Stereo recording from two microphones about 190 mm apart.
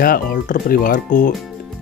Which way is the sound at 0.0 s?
50° left (ahead or behind).